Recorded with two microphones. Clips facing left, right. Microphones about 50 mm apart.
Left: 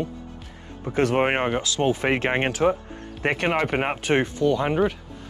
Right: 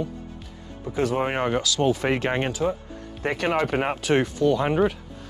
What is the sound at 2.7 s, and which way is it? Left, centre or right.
Music, left.